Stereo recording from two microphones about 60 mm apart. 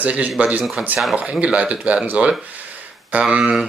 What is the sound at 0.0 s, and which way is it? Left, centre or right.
Speech, right.